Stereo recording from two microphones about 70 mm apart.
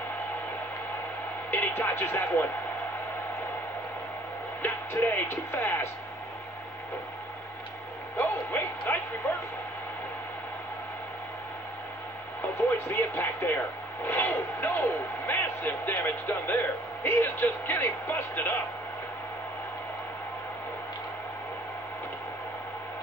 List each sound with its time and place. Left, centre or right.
1.5 s speech: left
4.6 s speech: left
8.2 s speech: left
12.6 s speech: left